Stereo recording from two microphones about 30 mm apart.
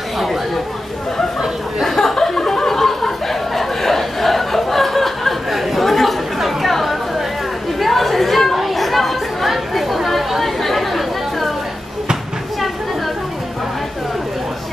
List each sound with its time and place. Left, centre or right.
2.0 s chuckle: centre
5.5 s chatter: centre